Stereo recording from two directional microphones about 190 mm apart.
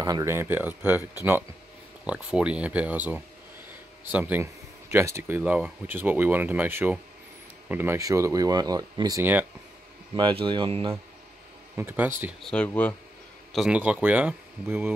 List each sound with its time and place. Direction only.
0.0 s speech: 15° right (ahead or behind)
2.0 s speech: 5° right (ahead or behind)
10.1 s speech: 25° right (ahead or behind)
11.7 s speech: 10° right (ahead or behind)